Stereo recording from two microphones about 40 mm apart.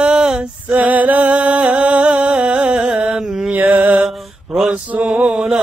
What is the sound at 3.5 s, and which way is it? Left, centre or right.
Music, right.